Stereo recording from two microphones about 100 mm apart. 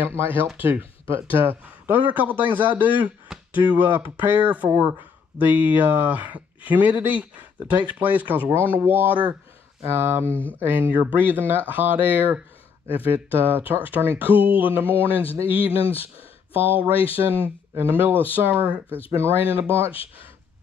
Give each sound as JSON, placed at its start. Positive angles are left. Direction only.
{"t": 0.0, "sound": "speech", "side_deg": -20}
{"t": 14.3, "sound": "a sound", "side_deg": 65}
{"t": 14.6, "sound": "speech", "side_deg": -20}
{"t": 15.5, "sound": "speech", "side_deg": 70}
{"t": 16.5, "sound": "speech", "side_deg": -20}
{"t": 19.8, "sound": "speech", "side_deg": 70}